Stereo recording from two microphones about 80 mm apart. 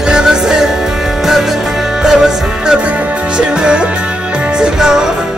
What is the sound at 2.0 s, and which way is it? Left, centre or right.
Music, centre.